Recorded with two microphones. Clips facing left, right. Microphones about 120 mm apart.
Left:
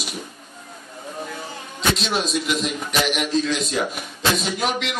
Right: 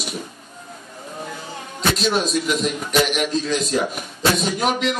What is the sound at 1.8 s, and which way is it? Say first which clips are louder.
Speech: right 2 dB; centre (ahead or behind).